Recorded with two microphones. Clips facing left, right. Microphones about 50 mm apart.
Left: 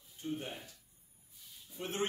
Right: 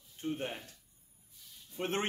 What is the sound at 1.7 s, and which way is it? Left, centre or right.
Speech, right.